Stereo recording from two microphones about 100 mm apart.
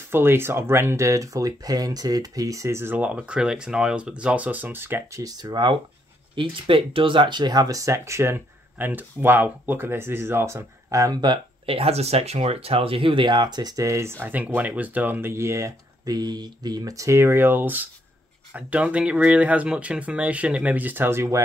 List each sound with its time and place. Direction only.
0.1 s speech: 25° right (ahead or behind)
5.2 s speech: 45° right (ahead or behind)
6.3 s speech: 60° right (ahead or behind); by 11.3 s 40° right (ahead or behind)
11.6 s speech: 75° right (ahead or behind); by 14.1 s 30° right (ahead or behind)
14.2 s speech: 20° right (ahead or behind)